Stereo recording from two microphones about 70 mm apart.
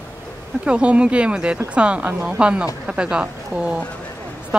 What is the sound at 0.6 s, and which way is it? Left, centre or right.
A woman's voice, centre.